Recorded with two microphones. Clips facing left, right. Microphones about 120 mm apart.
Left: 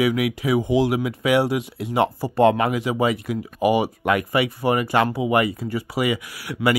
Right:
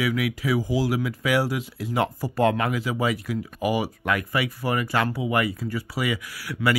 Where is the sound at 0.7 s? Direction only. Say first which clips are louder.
Left 5 dB; 65° left (ahead or behind).